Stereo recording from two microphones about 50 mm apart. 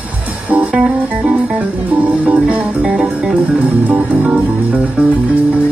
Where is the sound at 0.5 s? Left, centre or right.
Right.